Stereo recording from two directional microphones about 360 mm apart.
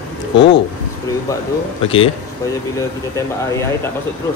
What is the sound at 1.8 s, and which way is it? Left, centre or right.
Speech, centre.